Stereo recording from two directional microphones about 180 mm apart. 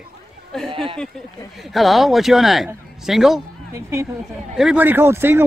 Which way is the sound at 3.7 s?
15° right (ahead or behind).